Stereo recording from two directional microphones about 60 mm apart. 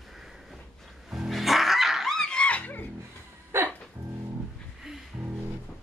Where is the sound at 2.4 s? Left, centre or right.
Left.